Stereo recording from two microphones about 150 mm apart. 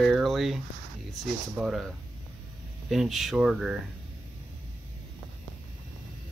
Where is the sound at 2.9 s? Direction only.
Centre (ahead or behind).